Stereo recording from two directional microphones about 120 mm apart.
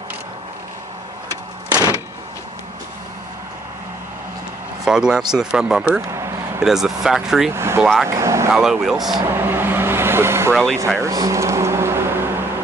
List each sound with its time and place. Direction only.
1.7 s door: 30° right (ahead or behind)
4.8 s speech: 5° right (ahead or behind)
6.1 s a sound: 25° right (ahead or behind)
6.6 s speech: 5° right (ahead or behind)
7.5 s speech: 20° right (ahead or behind)
7.8 s speech: centre (ahead or behind)
8.2 s speech: 25° right (ahead or behind)
8.5 s speech: 5° right (ahead or behind)
9.2 s vehicle: 20° right (ahead or behind)
10.5 s speech: 5° left (ahead or behind)
11.0 s speech: 30° right (ahead or behind)